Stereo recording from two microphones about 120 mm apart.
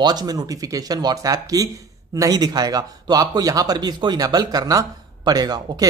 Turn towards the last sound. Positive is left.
turn(degrees=-35)  # may be behind; listen again after turning